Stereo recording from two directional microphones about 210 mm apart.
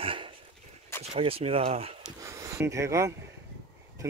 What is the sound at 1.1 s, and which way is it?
Speech, 30° right (ahead or behind).